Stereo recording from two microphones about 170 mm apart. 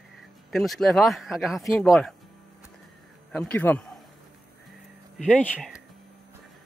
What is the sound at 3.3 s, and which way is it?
Speech, 10° left (ahead or behind).